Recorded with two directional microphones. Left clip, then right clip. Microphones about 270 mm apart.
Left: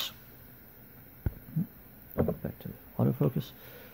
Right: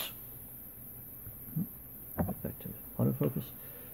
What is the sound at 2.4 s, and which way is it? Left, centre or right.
Speech, centre.